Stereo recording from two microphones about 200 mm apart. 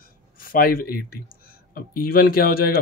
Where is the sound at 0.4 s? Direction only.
45° left (ahead or behind).